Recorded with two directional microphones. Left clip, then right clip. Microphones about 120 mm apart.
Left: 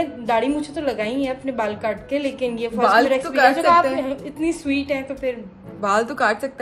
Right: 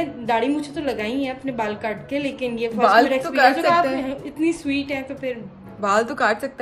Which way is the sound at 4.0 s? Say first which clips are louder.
Left 1 dB; 60° left (ahead or behind).